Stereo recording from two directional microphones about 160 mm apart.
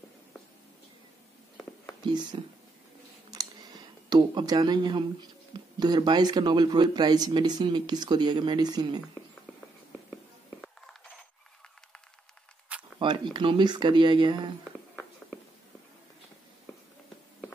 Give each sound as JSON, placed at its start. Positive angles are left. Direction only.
{"t": 2.0, "sound": "speech", "side_deg": -30}
{"t": 3.3, "sound": "a sound", "side_deg": -25}
{"t": 5.5, "sound": "speech", "side_deg": -25}
{"t": 12.7, "sound": "zipper", "side_deg": -10}
{"t": 13.0, "sound": "speech", "side_deg": -30}